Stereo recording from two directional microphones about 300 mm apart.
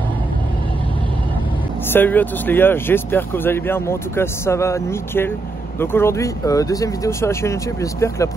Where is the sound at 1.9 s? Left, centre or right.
Centre.